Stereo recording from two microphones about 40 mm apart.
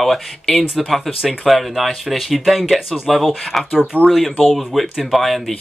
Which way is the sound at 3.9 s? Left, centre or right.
Right.